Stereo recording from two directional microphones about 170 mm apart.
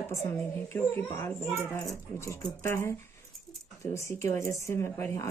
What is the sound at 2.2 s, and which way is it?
Speech, 15° left (ahead or behind).